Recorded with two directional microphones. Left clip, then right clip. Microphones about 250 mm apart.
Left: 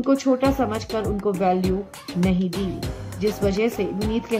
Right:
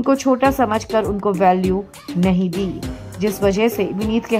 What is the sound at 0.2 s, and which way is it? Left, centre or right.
A woman's voice, centre.